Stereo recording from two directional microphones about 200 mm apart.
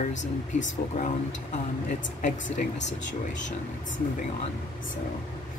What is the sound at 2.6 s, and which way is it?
Speech, 45° left (ahead or behind).